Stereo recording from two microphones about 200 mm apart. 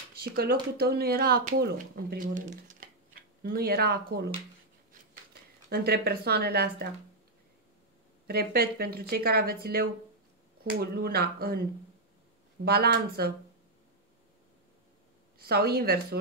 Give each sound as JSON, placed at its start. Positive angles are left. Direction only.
{"t": 0.2, "sound": "speech", "side_deg": -50}
{"t": 5.7, "sound": "speech", "side_deg": -50}
{"t": 8.3, "sound": "speech", "side_deg": -50}
{"t": 12.6, "sound": "speech", "side_deg": -50}
{"t": 15.3, "sound": "speech", "side_deg": -50}